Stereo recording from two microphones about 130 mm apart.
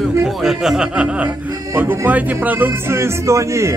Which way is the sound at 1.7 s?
15° right (ahead or behind).